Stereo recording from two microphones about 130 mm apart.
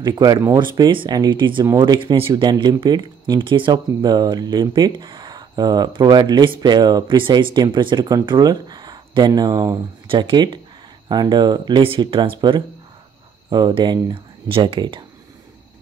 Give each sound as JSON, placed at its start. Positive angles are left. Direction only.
{"t": 0.0, "sound": "speech", "side_deg": -30}